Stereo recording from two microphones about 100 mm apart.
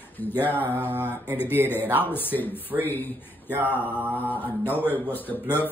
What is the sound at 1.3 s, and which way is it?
A man's voice, 20° left (ahead or behind).